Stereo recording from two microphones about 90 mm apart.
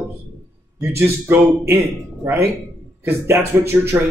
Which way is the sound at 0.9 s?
25° right (ahead or behind).